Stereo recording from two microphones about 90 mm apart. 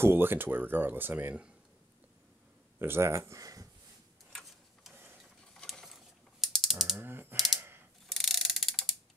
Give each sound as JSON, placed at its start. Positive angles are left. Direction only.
{"t": 0.0, "sound": "speech", "side_deg": -25}
{"t": 2.8, "sound": "speech", "side_deg": -30}
{"t": 4.3, "sound": "a sound", "side_deg": 5}
{"t": 5.5, "sound": "mechanisms", "side_deg": 5}
{"t": 7.0, "sound": "typing", "side_deg": -25}
{"t": 8.1, "sound": "mechanisms", "side_deg": 5}